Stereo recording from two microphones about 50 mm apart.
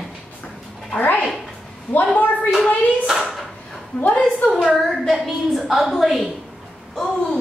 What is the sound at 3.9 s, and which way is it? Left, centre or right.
Speech, left.